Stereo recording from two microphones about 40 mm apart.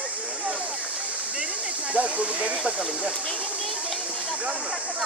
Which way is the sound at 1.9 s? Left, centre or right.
Right.